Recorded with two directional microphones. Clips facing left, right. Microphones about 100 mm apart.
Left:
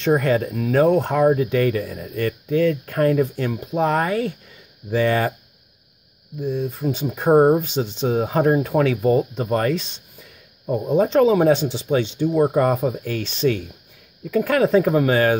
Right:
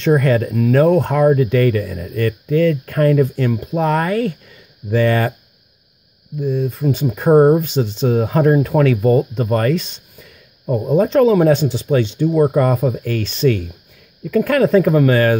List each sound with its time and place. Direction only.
0.0 s speech: 20° left (ahead or behind)
6.4 s speech: 20° left (ahead or behind)
7.3 s speech: 5° left (ahead or behind)
7.6 s speech: 45° right (ahead or behind)
8.1 s speech: 20° left (ahead or behind)
11.0 s speech: 20° left (ahead or behind)
14.3 s speech: 15° left (ahead or behind)